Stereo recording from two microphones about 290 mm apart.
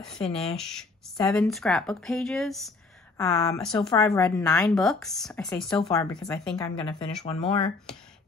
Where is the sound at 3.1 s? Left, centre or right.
Centre.